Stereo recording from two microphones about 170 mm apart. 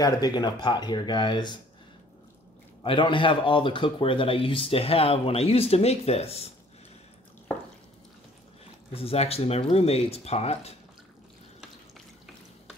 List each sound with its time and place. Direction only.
0.0 s speech: 25° left (ahead or behind)
2.8 s speech: 30° left (ahead or behind)
8.9 s speech: 35° left (ahead or behind)